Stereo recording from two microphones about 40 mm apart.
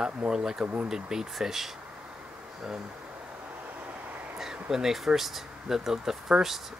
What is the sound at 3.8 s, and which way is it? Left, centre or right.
Vehicle, right.